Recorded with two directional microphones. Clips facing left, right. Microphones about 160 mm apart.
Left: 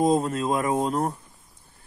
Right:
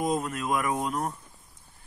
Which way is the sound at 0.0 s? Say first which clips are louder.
Left 7 dB; 30° left (ahead or behind).